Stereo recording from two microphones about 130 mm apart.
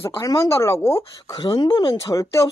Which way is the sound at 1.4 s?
35° left (ahead or behind).